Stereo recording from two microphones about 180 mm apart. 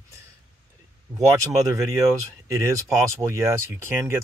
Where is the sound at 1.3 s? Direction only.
20° right (ahead or behind).